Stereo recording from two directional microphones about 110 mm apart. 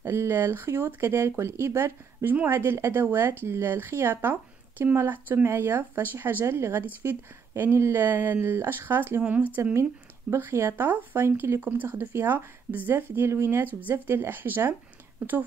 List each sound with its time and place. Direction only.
0.0 s speech: 25° right (ahead or behind)